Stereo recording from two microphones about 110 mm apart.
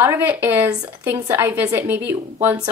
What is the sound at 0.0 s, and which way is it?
Speech, 15° right (ahead or behind).